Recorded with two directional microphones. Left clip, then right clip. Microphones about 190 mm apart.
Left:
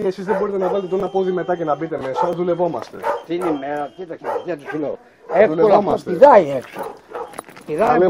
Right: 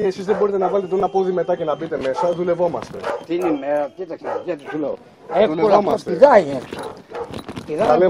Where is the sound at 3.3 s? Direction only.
15° left (ahead or behind); by 6.5 s 30° left (ahead or behind).